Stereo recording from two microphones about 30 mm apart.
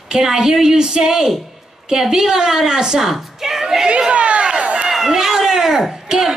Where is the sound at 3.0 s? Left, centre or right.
Centre.